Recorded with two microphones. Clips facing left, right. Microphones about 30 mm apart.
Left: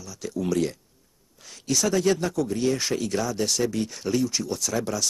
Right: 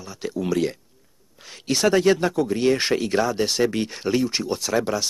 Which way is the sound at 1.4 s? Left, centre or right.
Right.